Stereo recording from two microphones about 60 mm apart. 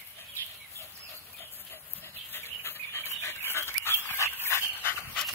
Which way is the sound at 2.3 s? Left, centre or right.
Left.